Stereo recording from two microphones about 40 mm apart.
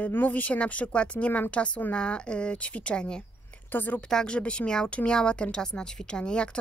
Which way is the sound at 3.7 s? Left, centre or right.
Left.